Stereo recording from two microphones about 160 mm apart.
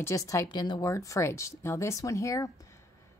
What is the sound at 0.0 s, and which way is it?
Speech, 20° left (ahead or behind).